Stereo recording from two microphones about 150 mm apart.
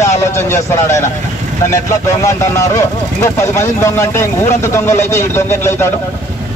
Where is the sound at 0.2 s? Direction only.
20° left (ahead or behind).